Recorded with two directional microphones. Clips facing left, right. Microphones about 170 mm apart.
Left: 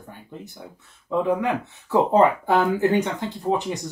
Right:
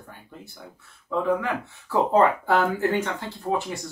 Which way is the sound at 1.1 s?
20° left (ahead or behind).